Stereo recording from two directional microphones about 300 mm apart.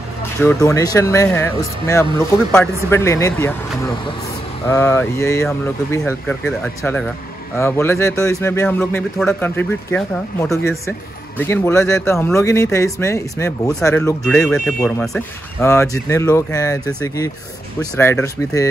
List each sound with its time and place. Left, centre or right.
0.4 s speech: centre